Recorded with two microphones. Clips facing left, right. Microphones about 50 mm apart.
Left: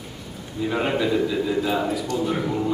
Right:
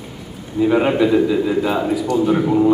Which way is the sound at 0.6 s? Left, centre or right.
Centre.